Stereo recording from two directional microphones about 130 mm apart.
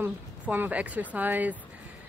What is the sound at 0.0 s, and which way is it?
Speech, 15° right (ahead or behind).